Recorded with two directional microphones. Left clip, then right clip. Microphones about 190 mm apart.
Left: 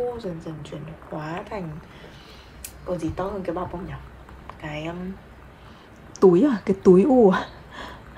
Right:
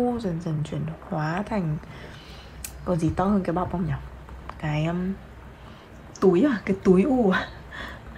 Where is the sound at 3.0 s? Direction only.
20° right (ahead or behind).